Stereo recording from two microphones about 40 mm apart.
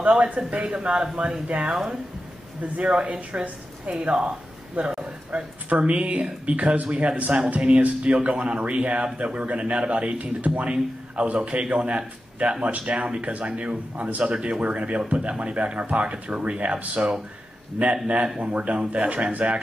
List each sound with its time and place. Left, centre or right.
0.0 s speech: right
2.8 s speech: right
10.4 s speech: right
10.7 s a man's voice: right